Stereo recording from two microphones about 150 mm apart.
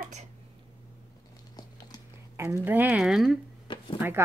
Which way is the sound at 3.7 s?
30° left (ahead or behind).